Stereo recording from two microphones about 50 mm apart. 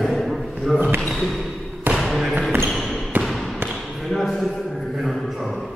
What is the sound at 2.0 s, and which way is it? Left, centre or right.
Basketball bounce, centre.